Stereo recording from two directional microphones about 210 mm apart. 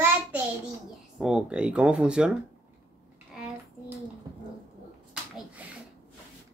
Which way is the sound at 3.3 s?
5° right (ahead or behind).